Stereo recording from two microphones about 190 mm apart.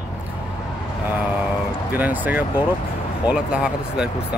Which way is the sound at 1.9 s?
10° right (ahead or behind).